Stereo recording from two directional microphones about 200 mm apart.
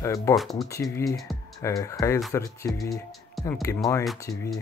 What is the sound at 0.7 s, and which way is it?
Speech, 15° left (ahead or behind).